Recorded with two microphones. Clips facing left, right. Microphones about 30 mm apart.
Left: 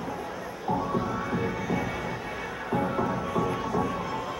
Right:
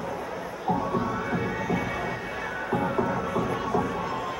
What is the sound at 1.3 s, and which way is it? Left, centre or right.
Music, centre.